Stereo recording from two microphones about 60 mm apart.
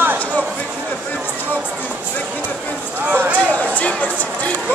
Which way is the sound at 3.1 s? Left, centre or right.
Right.